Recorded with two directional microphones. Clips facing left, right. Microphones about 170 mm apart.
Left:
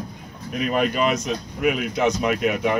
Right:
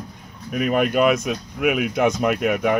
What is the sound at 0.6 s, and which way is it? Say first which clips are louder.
A man's voice: right 3 dB; 55° right (ahead or behind).